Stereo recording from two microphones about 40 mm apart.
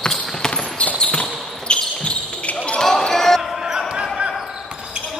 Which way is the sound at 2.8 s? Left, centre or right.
Centre.